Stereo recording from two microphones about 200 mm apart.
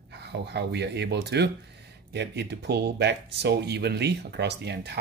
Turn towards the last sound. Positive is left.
turn(degrees=-55)  # may be behind; listen again after turning